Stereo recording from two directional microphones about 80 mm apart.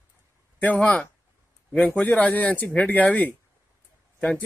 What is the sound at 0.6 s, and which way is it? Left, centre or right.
Speech, centre.